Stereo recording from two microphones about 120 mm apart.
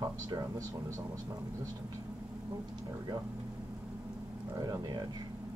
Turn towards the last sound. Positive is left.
turn(degrees=-35)  # may be behind; listen again after turning